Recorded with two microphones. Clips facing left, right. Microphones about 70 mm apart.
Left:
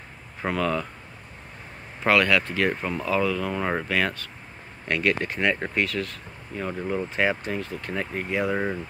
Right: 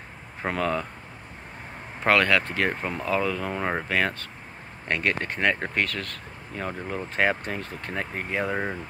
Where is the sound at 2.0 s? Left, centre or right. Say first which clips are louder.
Even; right.